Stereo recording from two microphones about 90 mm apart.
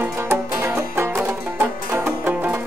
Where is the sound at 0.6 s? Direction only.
25° right (ahead or behind).